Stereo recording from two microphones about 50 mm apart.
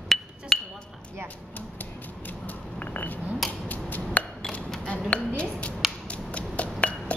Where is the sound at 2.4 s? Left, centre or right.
Left.